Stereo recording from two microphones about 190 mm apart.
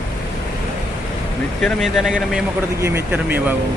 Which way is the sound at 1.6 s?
Centre (ahead or behind).